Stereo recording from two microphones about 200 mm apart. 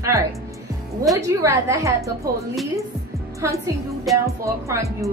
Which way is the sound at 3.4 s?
15° right (ahead or behind).